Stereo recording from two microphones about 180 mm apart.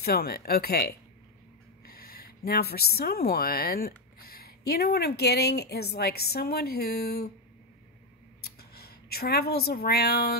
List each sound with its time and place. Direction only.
0.0 s a woman's voice: 60° left (ahead or behind)
8.4 s speech: 60° left (ahead or behind)